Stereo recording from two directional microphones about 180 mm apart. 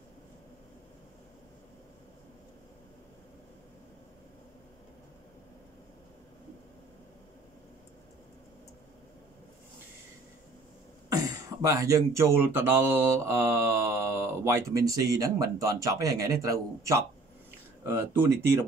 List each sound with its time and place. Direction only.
11.1 s speech: 20° right (ahead or behind)